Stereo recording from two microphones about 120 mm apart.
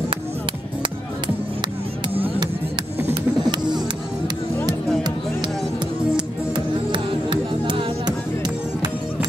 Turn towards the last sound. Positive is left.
turn(degrees=-45)  # may be behind; listen again after turning